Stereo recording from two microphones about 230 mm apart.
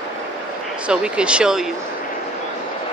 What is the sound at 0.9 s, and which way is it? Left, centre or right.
Speech, centre.